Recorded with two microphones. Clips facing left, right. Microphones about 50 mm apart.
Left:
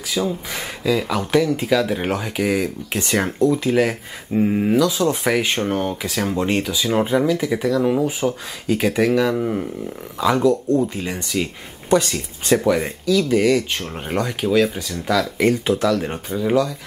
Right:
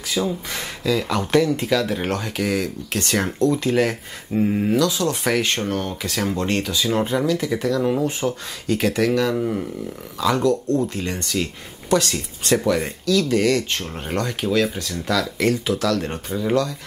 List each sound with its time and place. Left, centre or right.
0.2 s speech: centre
6.0 s speech: centre
15.3 s speech: left
15.9 s speech: centre